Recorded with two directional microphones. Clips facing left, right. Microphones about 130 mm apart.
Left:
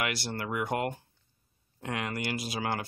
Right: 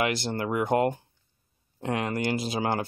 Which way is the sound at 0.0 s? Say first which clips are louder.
Right 6 dB; 25° right (ahead or behind).